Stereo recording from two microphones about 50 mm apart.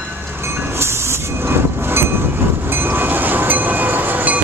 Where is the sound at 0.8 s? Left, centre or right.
Right.